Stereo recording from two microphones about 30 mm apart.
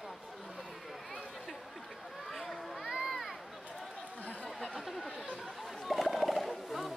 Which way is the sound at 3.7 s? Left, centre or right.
Centre.